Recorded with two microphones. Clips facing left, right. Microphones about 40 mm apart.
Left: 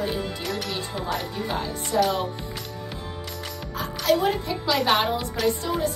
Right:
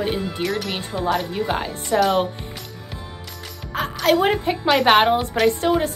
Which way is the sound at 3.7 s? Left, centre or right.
Right.